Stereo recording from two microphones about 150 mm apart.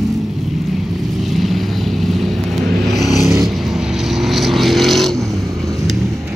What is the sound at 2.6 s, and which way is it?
Vehicle, 90° right.